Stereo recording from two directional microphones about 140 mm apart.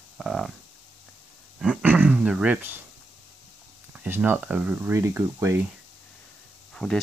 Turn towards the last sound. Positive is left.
turn(degrees=5)  # may be behind; listen again after turning